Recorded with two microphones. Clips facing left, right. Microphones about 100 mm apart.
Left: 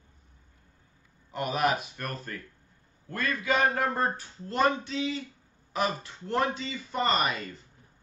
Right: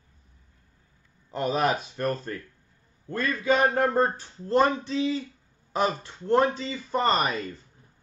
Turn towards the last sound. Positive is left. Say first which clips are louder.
# right 3 dB
turn(degrees=-35)  # may be behind; listen again after turning